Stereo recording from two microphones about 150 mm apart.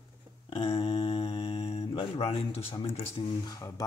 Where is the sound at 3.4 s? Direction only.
25° left (ahead or behind).